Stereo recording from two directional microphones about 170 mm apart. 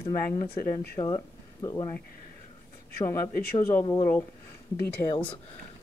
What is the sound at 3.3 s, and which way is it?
Speech, 60° left (ahead or behind).